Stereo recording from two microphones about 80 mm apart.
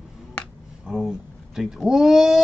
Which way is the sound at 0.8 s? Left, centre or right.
Centre.